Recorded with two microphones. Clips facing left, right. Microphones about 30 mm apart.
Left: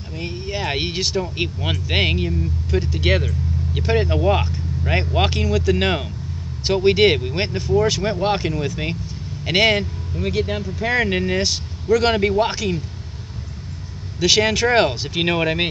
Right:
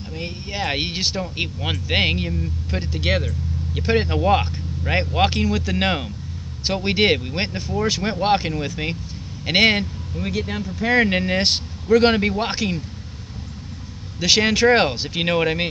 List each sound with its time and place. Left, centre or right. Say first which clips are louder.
0.2 s speech: left 1 dB; centre
3.8 s speech: left 1 dB; centre
7.9 s speech: right 1 dB; centre
10.4 s speech: left 1 dB; centre
11.0 s speech: right 2 dB; centre
11.3 s speech: right 1 dB; right
12.2 s speech: left 3 dB; centre
14.2 s speech: even; centre